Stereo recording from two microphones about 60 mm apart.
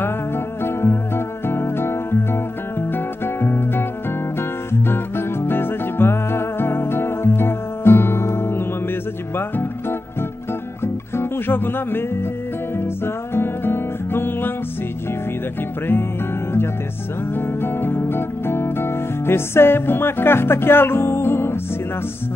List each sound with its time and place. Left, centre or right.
0.7 s music: left
10.8 s music: left
17.3 s music: left